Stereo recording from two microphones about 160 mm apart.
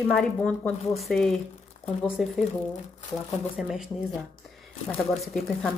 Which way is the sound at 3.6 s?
5° right (ahead or behind).